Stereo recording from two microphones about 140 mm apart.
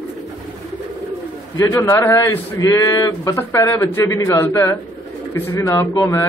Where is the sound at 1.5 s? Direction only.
20° left (ahead or behind).